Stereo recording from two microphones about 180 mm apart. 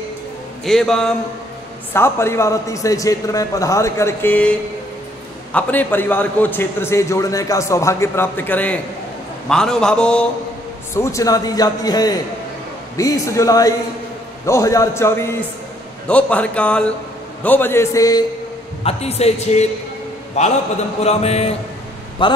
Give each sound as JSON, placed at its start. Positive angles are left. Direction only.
{"t": 0.7, "sound": "a man's voice", "side_deg": 0}
{"t": 2.0, "sound": "a man's voice", "side_deg": 15}
{"t": 5.5, "sound": "a man's voice", "side_deg": 10}
{"t": 11.0, "sound": "a man's voice", "side_deg": 15}
{"t": 18.9, "sound": "a man's voice", "side_deg": 35}